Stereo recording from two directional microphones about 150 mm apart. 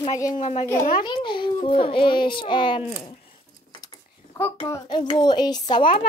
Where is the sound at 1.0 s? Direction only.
30° left (ahead or behind).